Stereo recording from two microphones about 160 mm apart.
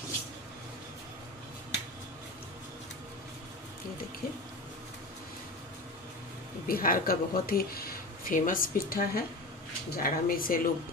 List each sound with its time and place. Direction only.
6.7 s speech: 65° left (ahead or behind)